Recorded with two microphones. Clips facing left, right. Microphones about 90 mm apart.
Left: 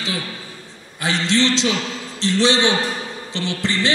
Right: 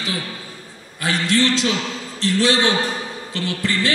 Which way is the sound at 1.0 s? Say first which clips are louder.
Even; 20° left (ahead or behind).